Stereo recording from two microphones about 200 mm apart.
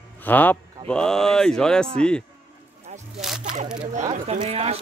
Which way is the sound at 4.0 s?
35° right (ahead or behind).